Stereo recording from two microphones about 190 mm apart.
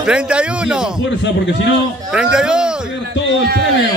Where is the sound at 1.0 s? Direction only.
70° left (ahead or behind).